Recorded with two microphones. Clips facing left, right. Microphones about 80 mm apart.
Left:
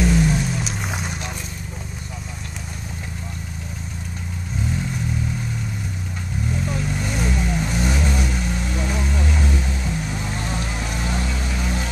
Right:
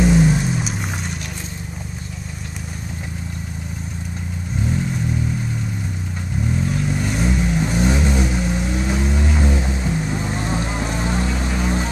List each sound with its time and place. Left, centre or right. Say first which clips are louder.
0.0 s music: right 4 dB; right
0.7 s music: right 2 dB; centre
6.9 s vehicle: right 3 dB; centre; by 11.9 s right